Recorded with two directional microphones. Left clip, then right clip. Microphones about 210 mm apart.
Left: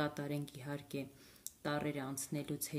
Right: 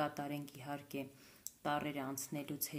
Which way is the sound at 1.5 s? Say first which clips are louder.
Even; 75° left (ahead or behind).